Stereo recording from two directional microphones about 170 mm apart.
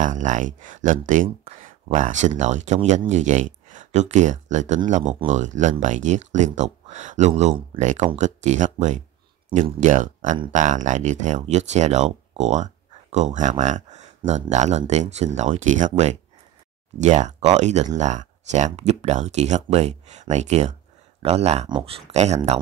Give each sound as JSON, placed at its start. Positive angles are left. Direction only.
{"t": 0.0, "sound": "speech", "side_deg": -50}
{"t": 21.6, "sound": "speech", "side_deg": -25}
{"t": 22.1, "sound": "speech", "side_deg": -40}